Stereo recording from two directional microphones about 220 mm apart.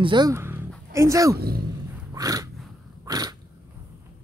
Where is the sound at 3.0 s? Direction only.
15° right (ahead or behind).